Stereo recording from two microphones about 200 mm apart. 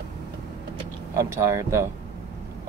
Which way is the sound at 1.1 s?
15° right (ahead or behind).